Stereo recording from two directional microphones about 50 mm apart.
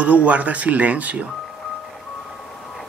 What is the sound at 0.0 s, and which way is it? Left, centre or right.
Speech, right.